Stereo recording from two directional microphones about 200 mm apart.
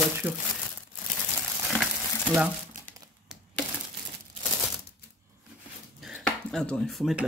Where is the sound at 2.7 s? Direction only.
40° right (ahead or behind).